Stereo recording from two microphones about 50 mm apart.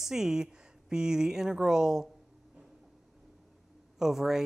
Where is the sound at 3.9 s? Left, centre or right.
Centre.